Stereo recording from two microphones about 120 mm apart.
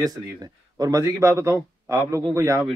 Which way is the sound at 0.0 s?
30° right (ahead or behind).